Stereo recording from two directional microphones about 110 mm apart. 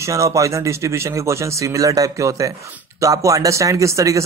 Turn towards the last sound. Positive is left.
turn(degrees=-30)  # may be behind; listen again after turning